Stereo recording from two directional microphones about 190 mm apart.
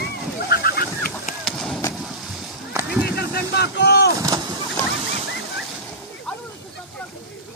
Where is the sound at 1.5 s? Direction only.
Centre (ahead or behind).